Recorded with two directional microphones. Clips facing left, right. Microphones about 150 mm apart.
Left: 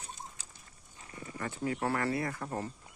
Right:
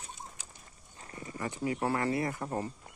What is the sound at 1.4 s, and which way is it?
Speech, 15° right (ahead or behind).